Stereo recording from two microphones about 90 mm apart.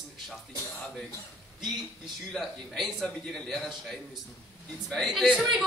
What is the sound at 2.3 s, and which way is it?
A man's voice, centre (ahead or behind).